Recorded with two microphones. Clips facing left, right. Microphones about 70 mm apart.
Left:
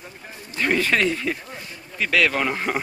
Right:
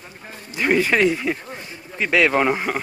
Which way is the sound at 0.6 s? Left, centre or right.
Centre.